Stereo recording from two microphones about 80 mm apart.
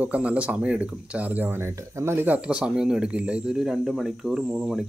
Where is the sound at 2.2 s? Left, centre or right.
Centre.